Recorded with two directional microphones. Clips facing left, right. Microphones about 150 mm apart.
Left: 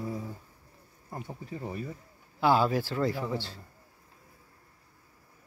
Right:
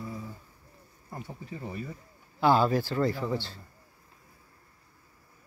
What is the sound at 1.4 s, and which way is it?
Speech, 35° left (ahead or behind).